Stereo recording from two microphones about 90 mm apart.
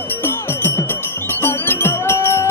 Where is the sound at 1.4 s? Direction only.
25° left (ahead or behind).